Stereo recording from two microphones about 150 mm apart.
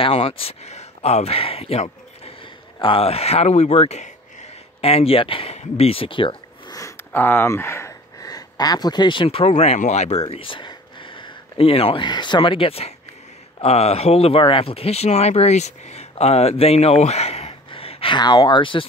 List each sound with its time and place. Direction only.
0.0 s speech: 35° left (ahead or behind)
6.8 s speech: 15° left (ahead or behind); by 18.9 s 35° left (ahead or behind)